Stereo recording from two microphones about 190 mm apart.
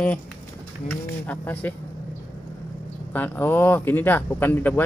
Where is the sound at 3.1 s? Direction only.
10° left (ahead or behind).